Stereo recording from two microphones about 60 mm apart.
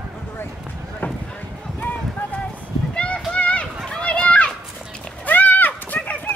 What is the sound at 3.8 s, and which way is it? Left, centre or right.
Children playing, centre.